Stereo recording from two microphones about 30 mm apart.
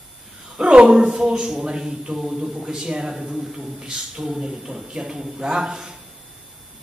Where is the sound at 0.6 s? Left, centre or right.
Right.